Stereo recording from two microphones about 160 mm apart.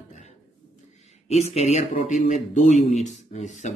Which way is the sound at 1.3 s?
40° left (ahead or behind).